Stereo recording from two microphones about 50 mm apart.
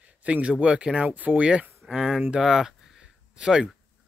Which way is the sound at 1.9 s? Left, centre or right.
Centre.